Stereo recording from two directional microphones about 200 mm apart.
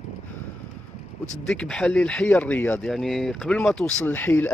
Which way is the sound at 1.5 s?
5° left (ahead or behind).